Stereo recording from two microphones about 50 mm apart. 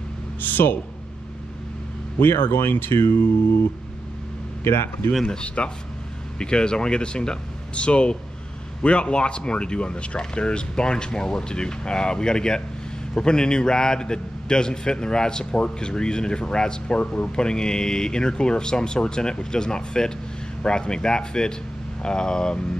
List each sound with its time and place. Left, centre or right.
0.4 s speech: left
2.1 s speech: left
4.6 s speech: left
5.2 s a man's voice: centre